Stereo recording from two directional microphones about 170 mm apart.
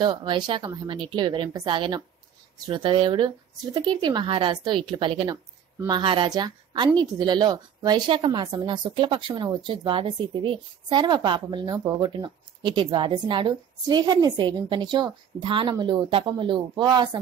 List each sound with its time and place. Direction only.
0.0 s a woman's voice: 30° right (ahead or behind)